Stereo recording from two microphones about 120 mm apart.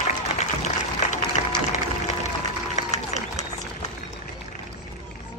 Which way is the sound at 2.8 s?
65° left (ahead or behind).